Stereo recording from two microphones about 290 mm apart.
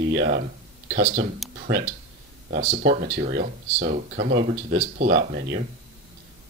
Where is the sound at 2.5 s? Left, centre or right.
Right.